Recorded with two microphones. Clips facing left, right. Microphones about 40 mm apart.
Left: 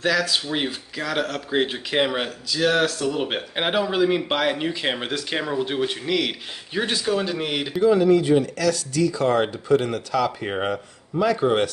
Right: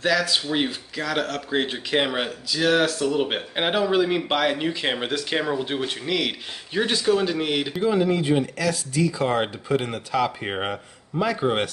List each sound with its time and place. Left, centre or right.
0.0 s speech: centre
7.8 s a man's voice: centre